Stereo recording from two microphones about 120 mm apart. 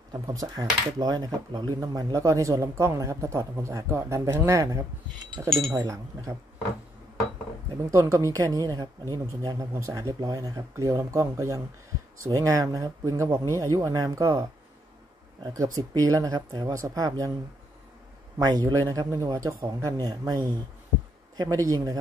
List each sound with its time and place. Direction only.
0.1 s speech: 30° right (ahead or behind)
7.9 s speech: 25° right (ahead or behind)
18.4 s speech: 35° right (ahead or behind)
21.6 s speech: 30° right (ahead or behind)